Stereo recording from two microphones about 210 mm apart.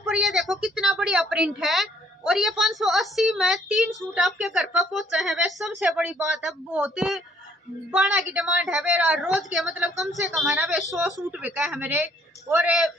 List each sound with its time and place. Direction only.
0.0 s a woman's voice: centre (ahead or behind)